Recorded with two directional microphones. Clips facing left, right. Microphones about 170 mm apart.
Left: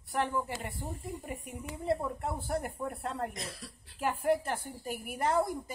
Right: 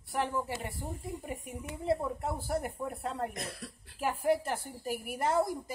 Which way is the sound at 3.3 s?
55° right (ahead or behind).